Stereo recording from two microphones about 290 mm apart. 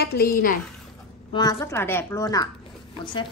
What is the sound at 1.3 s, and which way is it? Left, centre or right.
A woman's voice, centre.